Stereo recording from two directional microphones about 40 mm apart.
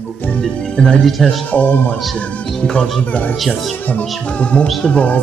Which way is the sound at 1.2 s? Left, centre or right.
Left.